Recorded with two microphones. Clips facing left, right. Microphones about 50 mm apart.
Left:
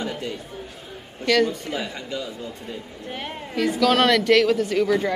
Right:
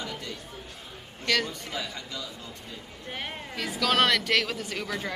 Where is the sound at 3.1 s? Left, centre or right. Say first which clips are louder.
Left 3 dB; centre.